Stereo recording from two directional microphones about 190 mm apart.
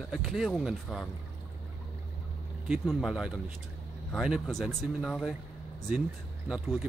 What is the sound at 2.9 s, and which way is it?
Speech, centre (ahead or behind).